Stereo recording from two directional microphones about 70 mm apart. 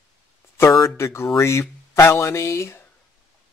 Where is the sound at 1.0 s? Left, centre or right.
Left.